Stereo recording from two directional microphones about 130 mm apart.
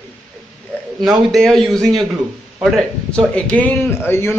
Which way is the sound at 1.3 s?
5° left (ahead or behind).